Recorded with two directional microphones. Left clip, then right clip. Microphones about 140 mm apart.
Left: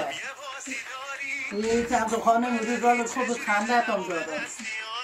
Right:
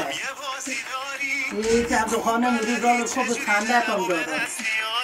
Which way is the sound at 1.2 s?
40° right (ahead or behind).